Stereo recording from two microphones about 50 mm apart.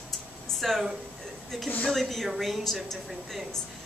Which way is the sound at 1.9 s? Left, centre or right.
Centre.